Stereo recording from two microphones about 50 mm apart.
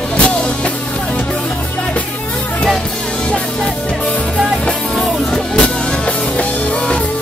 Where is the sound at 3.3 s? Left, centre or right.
Left.